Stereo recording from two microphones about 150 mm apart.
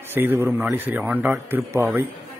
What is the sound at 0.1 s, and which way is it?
A man's voice, 15° right (ahead or behind).